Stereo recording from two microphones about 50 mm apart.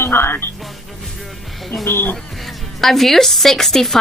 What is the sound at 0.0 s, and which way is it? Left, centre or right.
Speech, left.